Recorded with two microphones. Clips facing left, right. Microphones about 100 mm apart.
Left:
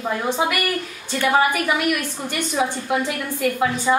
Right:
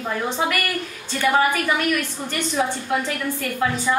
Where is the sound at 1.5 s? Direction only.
10° left (ahead or behind).